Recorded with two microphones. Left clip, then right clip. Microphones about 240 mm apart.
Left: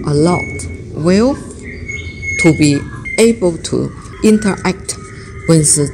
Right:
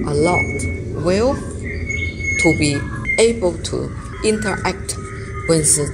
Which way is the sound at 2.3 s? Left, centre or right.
Left.